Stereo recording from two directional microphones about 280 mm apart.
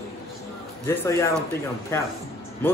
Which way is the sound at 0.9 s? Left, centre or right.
Centre.